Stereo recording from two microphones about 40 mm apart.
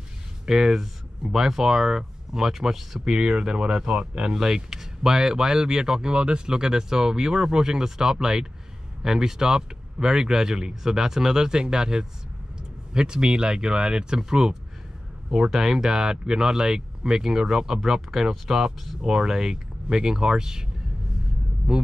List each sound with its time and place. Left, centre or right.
0.5 s speech: centre
4.4 s speech: centre
21.7 s speech: centre